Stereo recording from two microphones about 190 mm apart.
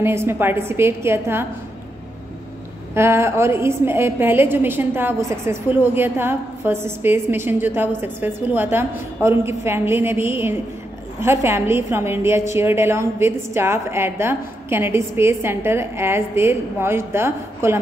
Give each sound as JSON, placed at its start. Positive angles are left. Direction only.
{"t": 0.0, "sound": "a woman's voice", "side_deg": -15}
{"t": 2.9, "sound": "a woman's voice", "side_deg": -15}